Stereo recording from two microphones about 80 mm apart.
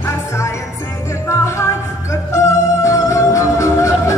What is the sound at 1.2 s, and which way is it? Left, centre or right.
Music, left.